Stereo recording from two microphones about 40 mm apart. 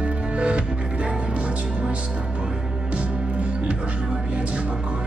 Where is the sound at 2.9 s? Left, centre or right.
Right.